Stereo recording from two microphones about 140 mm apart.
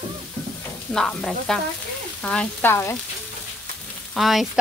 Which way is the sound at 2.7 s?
20° left (ahead or behind).